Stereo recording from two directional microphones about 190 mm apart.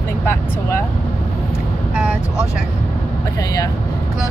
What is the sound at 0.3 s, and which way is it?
Speech, 10° left (ahead or behind).